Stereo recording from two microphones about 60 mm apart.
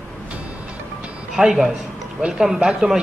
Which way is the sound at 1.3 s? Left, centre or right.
Centre.